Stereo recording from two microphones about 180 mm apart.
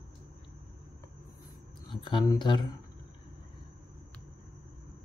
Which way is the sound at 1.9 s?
25° left (ahead or behind).